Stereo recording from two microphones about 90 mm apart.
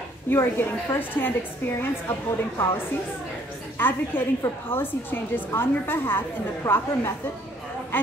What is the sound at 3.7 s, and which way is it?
A woman's voice, 25° left (ahead or behind).